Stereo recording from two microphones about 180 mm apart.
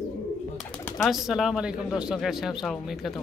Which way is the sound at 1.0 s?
Centre (ahead or behind).